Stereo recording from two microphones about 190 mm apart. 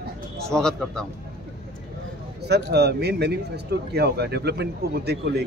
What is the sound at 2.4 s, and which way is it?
Speech, 60° right (ahead or behind).